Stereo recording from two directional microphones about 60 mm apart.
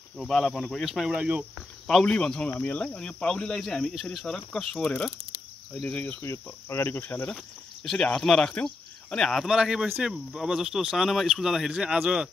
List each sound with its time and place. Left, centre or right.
0.2 s speech: centre
0.7 s speech: centre
1.1 s cricket: centre
2.0 s speech: centre
5.7 s cricket: left
6.2 s cricket: left
7.0 s cricket: left
7.8 s speech: centre
9.5 s speech: centre